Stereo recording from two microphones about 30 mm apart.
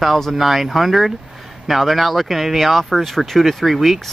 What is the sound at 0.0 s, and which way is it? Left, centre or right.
Speech, centre.